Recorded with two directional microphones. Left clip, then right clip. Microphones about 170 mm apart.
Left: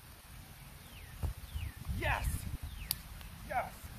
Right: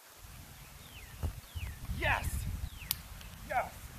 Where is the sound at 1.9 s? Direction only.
20° right (ahead or behind).